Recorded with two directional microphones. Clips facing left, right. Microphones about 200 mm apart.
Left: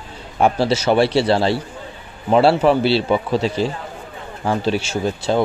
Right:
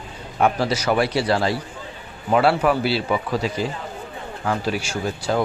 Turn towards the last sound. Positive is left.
turn(degrees=25)  # may be behind; listen again after turning